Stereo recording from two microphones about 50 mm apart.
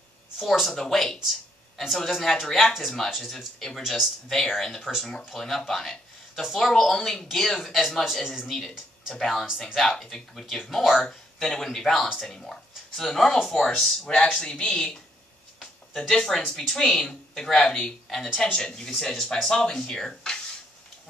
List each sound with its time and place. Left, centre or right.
0.4 s speech: centre
5.7 s a sound: centre
6.4 s speech: centre
8.0 s a man's voice: centre
9.1 s speech: centre
14.3 s speech: centre
15.6 s a sound: centre
16.3 s speech: centre